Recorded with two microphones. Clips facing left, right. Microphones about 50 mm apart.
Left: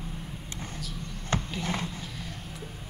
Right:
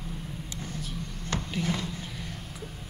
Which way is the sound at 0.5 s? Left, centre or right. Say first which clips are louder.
Even; left.